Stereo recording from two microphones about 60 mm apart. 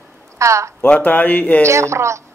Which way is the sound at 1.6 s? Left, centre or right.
Right.